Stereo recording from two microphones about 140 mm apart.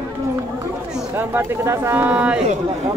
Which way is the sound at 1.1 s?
15° right (ahead or behind).